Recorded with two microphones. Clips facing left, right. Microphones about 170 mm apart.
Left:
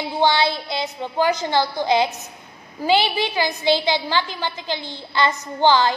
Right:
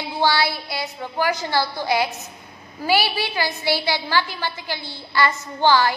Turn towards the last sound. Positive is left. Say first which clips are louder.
# left 1 dB
turn(degrees=20)  # may be behind; listen again after turning